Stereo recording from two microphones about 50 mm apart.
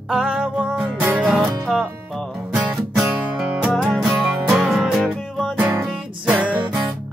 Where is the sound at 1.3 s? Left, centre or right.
Centre.